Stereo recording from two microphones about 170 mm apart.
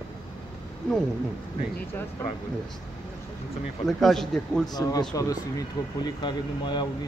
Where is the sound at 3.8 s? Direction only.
Centre (ahead or behind).